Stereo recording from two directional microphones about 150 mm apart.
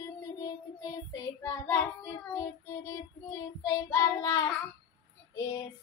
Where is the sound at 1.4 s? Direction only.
20° left (ahead or behind).